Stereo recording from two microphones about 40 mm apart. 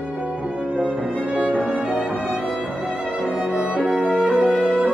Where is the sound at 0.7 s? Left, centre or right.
Right.